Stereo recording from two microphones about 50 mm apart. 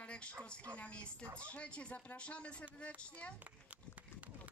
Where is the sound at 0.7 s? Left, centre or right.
Left.